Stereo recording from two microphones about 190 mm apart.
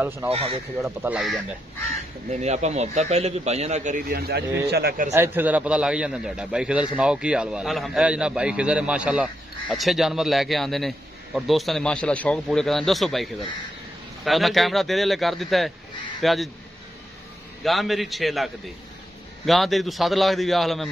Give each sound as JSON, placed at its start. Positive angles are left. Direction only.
{"t": 0.0, "sound": "speech", "side_deg": -10}
{"t": 0.3, "sound": "a man's voice", "side_deg": -30}
{"t": 0.8, "sound": "a man's voice", "side_deg": -10}
{"t": 2.3, "sound": "a man's voice", "side_deg": -35}
{"t": 5.1, "sound": "a man's voice", "side_deg": -10}
{"t": 17.6, "sound": "a man's voice", "side_deg": 0}